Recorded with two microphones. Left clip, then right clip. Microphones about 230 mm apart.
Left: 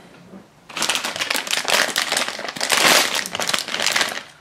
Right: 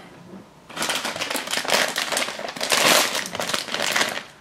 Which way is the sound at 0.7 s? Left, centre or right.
Centre.